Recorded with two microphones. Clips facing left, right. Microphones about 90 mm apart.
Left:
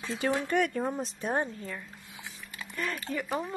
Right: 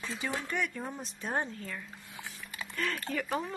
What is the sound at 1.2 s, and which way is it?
Speech, 15° left (ahead or behind).